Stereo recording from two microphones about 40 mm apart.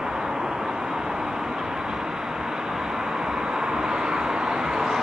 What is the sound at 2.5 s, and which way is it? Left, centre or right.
Vehicle, centre.